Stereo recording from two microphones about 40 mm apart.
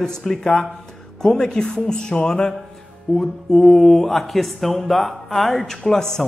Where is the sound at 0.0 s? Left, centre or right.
Centre.